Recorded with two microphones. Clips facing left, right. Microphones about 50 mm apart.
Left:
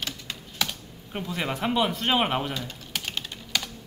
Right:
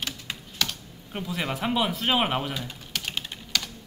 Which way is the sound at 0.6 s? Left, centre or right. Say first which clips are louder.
Even; centre.